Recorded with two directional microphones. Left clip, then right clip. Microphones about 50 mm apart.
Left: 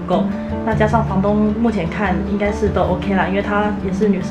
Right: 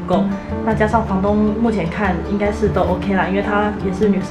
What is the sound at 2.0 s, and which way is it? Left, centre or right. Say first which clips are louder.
A woman's voice: even; centre.